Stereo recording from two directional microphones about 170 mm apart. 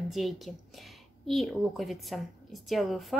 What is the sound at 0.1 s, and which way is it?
A woman's voice, centre (ahead or behind).